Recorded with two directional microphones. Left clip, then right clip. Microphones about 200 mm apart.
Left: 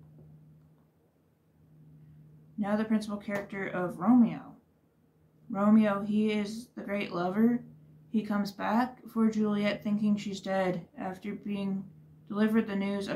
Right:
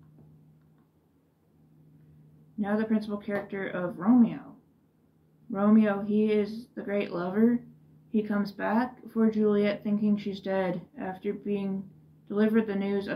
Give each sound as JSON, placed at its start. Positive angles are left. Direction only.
{"t": 2.6, "sound": "speech", "side_deg": 20}
{"t": 5.5, "sound": "speech", "side_deg": 20}